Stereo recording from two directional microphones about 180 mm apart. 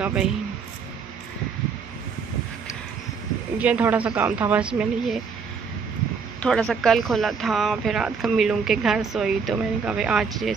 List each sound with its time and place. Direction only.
0.0 s speech: 5° right (ahead or behind)
3.5 s speech: 10° right (ahead or behind)
6.4 s speech: 5° left (ahead or behind)